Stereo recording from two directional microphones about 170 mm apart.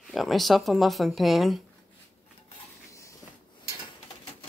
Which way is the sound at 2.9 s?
15° left (ahead or behind).